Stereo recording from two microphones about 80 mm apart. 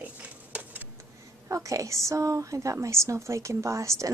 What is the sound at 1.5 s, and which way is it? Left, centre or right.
A woman's voice, right.